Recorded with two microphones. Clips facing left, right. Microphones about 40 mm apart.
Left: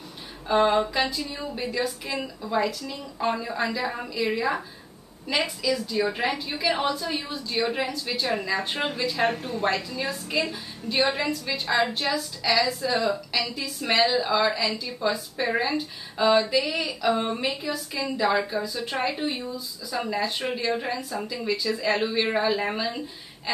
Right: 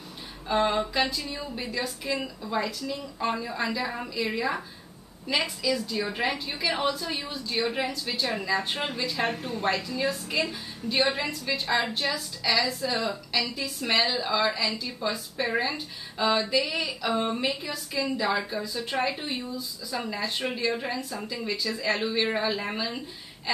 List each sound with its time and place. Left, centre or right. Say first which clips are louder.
0.5 s a woman's voice: left 4 dB; centre